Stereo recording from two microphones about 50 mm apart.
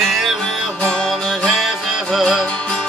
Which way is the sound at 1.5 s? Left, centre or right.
Centre.